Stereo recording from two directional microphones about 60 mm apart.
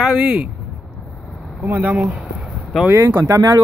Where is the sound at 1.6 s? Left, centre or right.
Right.